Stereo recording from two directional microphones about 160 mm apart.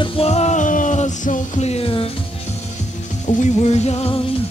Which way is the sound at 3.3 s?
45° left (ahead or behind).